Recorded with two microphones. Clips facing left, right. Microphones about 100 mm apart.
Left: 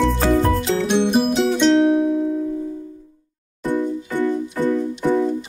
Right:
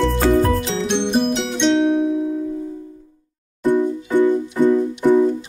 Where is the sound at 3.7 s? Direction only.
20° right (ahead or behind).